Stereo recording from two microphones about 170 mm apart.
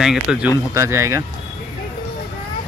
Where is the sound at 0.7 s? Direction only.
15° right (ahead or behind).